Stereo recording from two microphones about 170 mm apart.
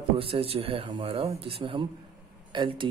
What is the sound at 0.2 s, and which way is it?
Speech, 35° right (ahead or behind).